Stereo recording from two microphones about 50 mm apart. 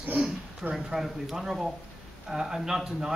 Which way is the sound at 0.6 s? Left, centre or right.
Right.